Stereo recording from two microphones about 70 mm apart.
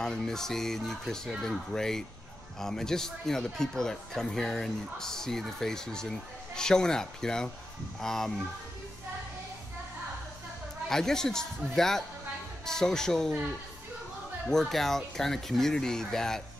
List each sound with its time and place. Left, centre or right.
0.0 s speech: centre
10.9 s speech: centre
14.5 s speech: centre